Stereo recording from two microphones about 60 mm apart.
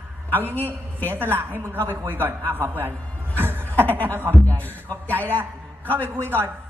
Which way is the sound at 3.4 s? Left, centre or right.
Right.